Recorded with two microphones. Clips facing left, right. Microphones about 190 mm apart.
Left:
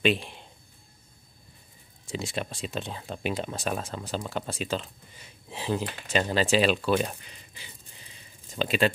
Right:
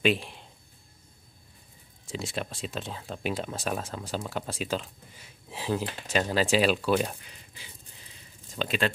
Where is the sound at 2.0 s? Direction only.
Centre (ahead or behind).